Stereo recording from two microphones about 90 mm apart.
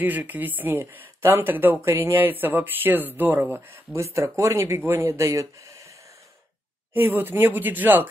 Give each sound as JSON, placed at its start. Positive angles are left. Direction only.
{"t": 0.0, "sound": "speech", "side_deg": -20}
{"t": 6.9, "sound": "speech", "side_deg": -25}